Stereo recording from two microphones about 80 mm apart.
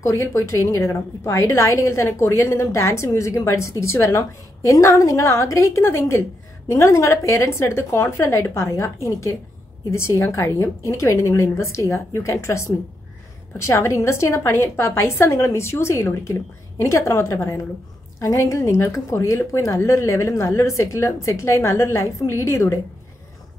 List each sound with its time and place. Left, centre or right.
0.0 s a woman's voice: left